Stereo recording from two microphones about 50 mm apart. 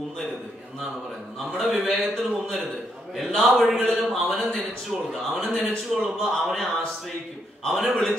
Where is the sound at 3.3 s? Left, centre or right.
Centre.